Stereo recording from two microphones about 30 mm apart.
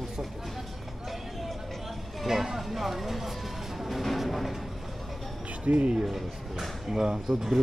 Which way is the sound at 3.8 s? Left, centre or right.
Centre.